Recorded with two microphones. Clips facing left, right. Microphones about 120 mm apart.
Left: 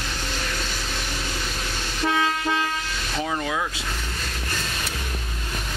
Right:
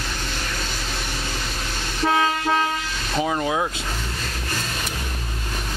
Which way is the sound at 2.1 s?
40° right (ahead or behind).